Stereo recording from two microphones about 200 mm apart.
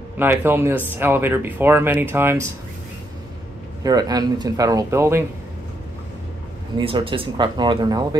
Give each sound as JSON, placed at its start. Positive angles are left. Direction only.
{"t": 0.2, "sound": "speech", "side_deg": -10}
{"t": 3.8, "sound": "speech", "side_deg": -20}
{"t": 6.8, "sound": "speech", "side_deg": -25}